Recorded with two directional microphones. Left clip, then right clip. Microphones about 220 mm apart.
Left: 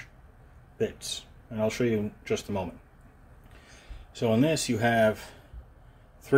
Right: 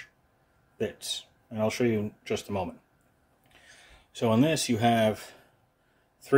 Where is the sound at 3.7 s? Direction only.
20° right (ahead or behind).